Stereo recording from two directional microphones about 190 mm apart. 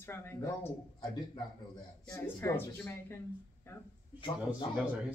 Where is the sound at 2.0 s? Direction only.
15° left (ahead or behind).